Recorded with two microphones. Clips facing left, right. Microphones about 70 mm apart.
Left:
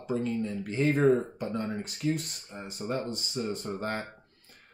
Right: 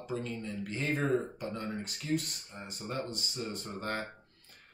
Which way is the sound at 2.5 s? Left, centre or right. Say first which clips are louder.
Left 5 dB; left.